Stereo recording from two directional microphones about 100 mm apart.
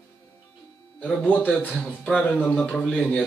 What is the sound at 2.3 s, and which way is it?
Speech, 15° left (ahead or behind).